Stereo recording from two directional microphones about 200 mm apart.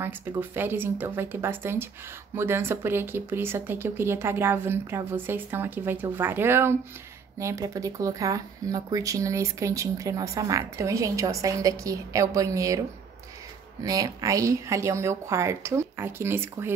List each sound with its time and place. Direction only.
0.4 s speech: 10° right (ahead or behind)
13.8 s speech: 15° right (ahead or behind)